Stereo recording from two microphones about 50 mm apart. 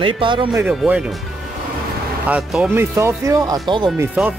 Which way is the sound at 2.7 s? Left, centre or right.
Right.